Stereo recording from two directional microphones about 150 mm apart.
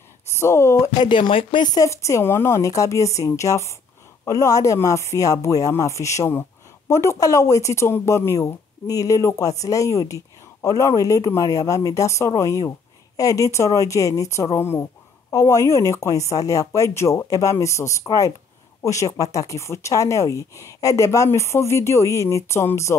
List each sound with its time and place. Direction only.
0.3 s speech: 20° left (ahead or behind)
0.9 s speech: 30° left (ahead or behind)